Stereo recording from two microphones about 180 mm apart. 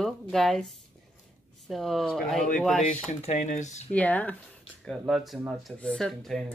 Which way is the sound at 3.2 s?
40° left (ahead or behind).